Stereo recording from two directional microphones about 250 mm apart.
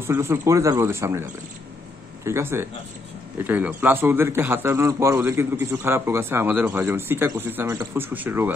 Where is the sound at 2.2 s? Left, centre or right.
Centre.